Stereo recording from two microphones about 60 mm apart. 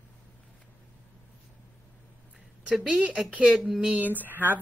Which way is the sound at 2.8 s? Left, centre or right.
Centre.